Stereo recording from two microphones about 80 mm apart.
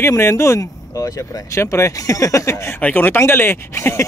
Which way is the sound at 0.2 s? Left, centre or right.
Left.